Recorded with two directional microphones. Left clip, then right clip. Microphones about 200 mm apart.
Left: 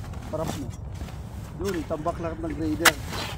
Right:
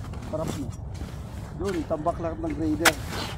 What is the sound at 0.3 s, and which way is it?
Speech, 30° left (ahead or behind).